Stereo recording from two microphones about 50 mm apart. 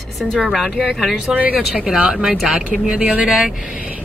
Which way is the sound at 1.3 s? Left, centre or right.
Right.